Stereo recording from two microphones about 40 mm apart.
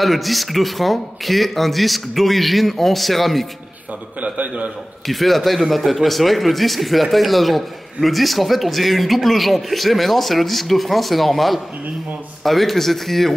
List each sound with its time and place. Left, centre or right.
0.0 s speech: centre
4.2 s a man's voice: right
5.0 s speech: centre